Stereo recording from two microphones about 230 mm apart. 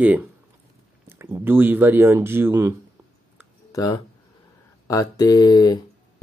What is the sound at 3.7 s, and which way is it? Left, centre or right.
Speech, centre.